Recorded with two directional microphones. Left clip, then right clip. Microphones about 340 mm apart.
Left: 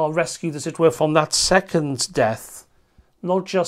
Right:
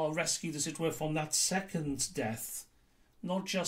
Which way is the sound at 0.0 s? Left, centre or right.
Left.